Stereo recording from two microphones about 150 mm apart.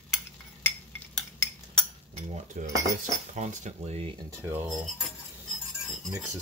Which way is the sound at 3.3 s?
50° right (ahead or behind).